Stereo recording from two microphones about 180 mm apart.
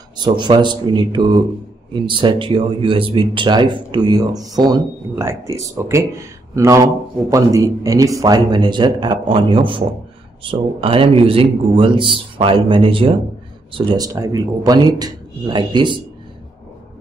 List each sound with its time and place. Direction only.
0.2 s speech: 25° right (ahead or behind)